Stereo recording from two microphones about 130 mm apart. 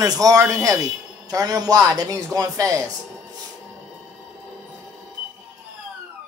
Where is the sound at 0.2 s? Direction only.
25° right (ahead or behind).